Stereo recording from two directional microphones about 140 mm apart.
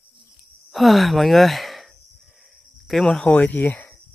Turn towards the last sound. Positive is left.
turn(degrees=10)  # may be behind; listen again after turning